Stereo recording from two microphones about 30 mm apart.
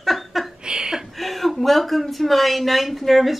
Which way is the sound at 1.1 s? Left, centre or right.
Centre.